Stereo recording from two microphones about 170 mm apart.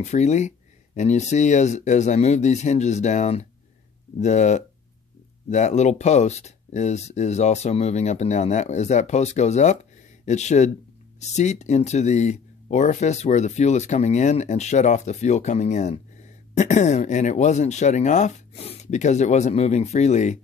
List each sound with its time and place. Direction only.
0.0 s speech: 40° left (ahead or behind)